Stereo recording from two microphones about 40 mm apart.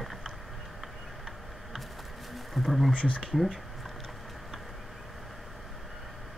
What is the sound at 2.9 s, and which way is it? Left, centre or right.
Speech, left.